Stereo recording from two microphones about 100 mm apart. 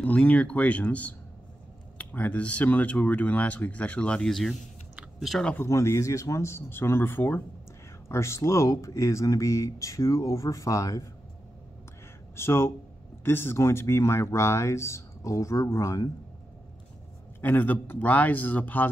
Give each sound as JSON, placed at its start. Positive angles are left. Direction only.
{"t": 0.0, "sound": "speech", "side_deg": 15}
{"t": 4.9, "sound": "chewing", "side_deg": 0}
{"t": 5.6, "sound": "speech", "side_deg": 30}
{"t": 12.4, "sound": "speech", "side_deg": 25}
{"t": 17.4, "sound": "speech", "side_deg": 20}